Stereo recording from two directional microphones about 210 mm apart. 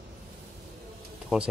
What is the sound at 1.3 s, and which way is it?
Speech, centre (ahead or behind).